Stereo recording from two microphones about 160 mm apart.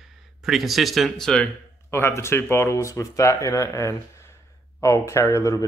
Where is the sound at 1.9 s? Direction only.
15° left (ahead or behind).